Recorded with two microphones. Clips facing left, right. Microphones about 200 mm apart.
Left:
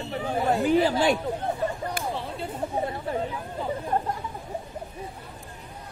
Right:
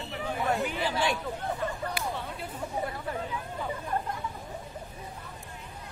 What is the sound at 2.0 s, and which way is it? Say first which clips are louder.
Chatter: left 4 dB; 50° left (ahead or behind).